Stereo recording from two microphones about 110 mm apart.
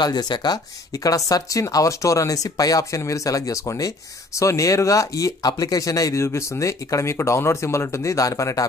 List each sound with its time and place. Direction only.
0.0 s speech: 40° left (ahead or behind)